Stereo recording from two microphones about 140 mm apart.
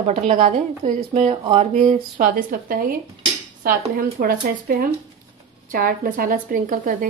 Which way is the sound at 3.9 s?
90° right.